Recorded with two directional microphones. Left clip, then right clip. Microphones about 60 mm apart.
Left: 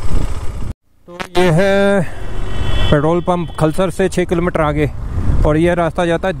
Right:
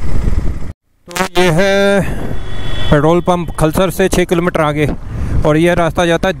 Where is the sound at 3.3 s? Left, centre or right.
Right.